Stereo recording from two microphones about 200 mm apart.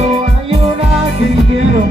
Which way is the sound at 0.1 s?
30° right (ahead or behind).